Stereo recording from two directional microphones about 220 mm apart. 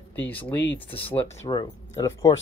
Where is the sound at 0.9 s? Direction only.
25° left (ahead or behind).